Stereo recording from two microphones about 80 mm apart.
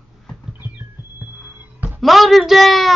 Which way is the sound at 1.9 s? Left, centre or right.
Centre.